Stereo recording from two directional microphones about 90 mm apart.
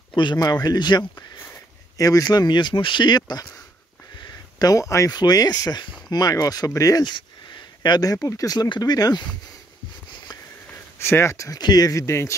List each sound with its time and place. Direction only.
0.1 s speech: 60° left (ahead or behind)
2.0 s speech: 40° left (ahead or behind)
4.6 s speech: 40° left (ahead or behind)
5.1 s speech: 50° left (ahead or behind)
8.5 s speech: 55° left (ahead or behind)
11.0 s speech: 30° left (ahead or behind)